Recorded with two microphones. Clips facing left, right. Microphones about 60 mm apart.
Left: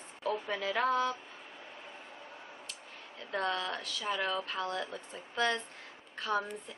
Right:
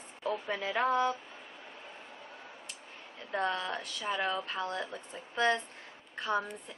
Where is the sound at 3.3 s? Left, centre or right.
Right.